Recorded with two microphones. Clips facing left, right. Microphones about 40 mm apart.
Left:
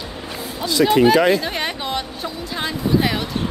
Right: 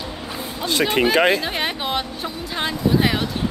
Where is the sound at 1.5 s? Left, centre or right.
Centre.